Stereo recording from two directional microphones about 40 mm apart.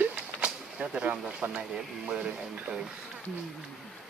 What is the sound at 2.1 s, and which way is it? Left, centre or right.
Speech, right.